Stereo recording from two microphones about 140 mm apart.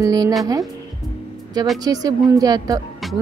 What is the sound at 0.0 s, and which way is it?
Speech, 25° right (ahead or behind).